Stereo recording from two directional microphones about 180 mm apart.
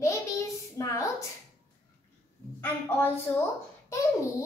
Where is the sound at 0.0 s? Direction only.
15° left (ahead or behind).